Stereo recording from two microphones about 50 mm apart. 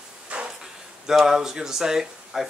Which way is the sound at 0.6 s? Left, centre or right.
Centre.